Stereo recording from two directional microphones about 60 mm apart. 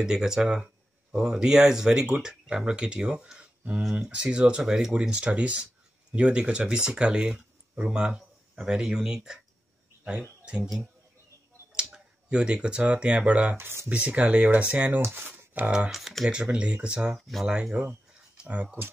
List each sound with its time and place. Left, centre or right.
0.0 s speech: centre
10.4 s speech: centre
11.9 s speech: centre
13.6 s speech: right
13.8 s speech: right
15.1 s speech: right
15.9 s speech: centre
16.3 s speech: centre